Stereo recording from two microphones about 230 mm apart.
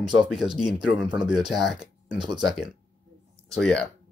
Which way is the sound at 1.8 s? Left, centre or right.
Centre.